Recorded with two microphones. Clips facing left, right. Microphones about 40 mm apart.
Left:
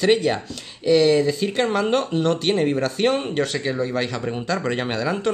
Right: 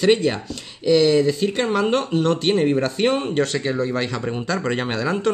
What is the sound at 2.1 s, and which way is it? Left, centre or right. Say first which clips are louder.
Speech: right 1 dB; centre.